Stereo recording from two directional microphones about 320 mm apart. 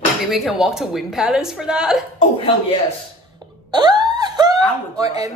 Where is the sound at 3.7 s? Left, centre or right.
Centre.